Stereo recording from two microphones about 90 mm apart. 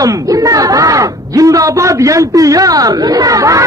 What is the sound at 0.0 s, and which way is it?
Speech, 40° right (ahead or behind).